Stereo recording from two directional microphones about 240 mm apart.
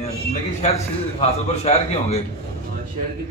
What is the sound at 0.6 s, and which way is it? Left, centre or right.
A man's voice, left.